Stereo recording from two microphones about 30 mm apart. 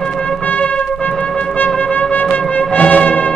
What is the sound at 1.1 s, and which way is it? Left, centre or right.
Music, left.